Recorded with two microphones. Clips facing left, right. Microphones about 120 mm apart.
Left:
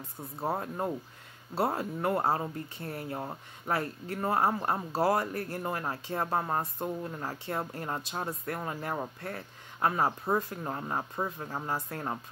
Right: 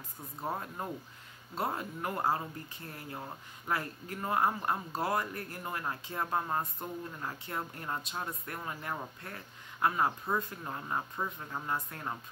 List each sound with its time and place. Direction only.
0.4 s speech: 30° left (ahead or behind)